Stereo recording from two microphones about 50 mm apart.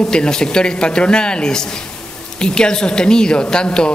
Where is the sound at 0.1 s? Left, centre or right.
Centre.